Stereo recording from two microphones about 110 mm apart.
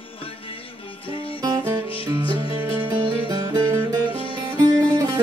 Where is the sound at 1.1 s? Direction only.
55° left (ahead or behind).